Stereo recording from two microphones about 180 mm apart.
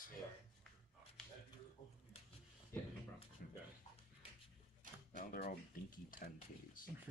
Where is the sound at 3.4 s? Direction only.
55° left (ahead or behind).